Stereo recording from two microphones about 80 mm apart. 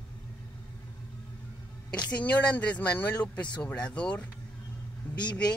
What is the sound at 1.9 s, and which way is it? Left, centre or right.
Speech, centre.